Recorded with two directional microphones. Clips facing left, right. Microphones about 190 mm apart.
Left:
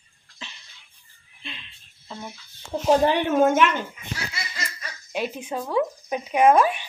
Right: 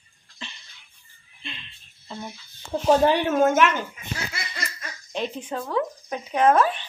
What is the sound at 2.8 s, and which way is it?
Speech, 10° left (ahead or behind).